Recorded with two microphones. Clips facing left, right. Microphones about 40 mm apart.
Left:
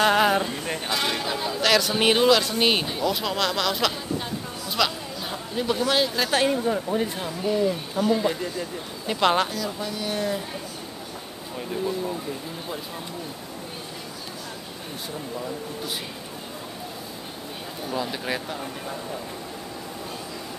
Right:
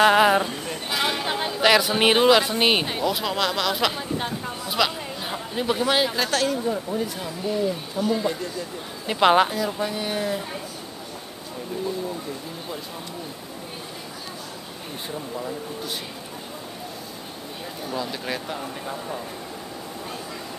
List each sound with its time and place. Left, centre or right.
0.0 s a sound: centre
1.2 s a sound: right
1.6 s speech: centre
3.0 s speech: centre
4.6 s a sound: centre
6.3 s speech: left
9.0 s speech: centre
17.9 s speech: centre
18.5 s speech: centre